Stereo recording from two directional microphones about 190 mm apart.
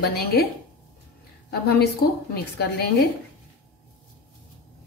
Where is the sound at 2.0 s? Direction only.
55° left (ahead or behind).